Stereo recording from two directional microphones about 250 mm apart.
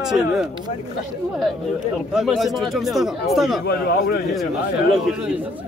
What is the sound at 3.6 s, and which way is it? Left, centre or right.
Speech, left.